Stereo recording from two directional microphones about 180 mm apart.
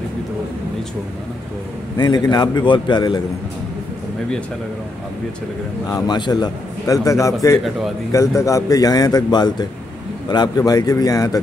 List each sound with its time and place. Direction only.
2.0 s speech: 25° left (ahead or behind)
5.9 s speech: 20° left (ahead or behind)